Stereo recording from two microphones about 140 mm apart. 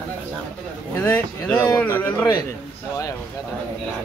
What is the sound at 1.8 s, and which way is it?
Speech, 15° left (ahead or behind).